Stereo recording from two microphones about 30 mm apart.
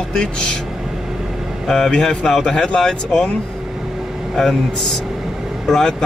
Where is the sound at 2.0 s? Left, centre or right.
Centre.